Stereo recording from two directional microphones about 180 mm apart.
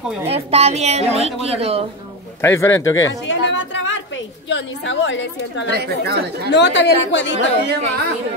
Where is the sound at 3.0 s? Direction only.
90° left.